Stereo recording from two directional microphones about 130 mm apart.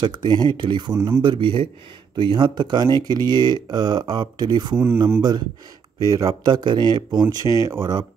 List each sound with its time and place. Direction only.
0.0 s speech: 35° right (ahead or behind)
0.9 s speech: 20° right (ahead or behind)
1.2 s speech: 40° right (ahead or behind)
4.7 s speech: 15° right (ahead or behind)
6.0 s speech: 25° right (ahead or behind)